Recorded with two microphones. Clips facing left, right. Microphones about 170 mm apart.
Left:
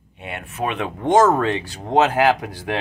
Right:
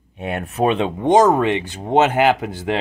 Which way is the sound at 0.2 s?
45° right (ahead or behind).